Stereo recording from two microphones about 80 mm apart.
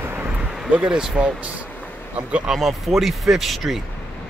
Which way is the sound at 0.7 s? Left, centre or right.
Centre.